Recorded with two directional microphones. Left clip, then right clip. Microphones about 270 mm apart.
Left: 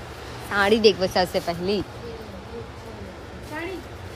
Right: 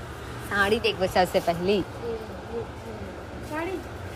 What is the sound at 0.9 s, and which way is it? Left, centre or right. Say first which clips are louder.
Speech: even; centre.